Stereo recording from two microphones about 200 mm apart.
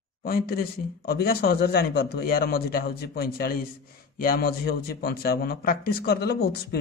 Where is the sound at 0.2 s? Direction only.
50° left (ahead or behind).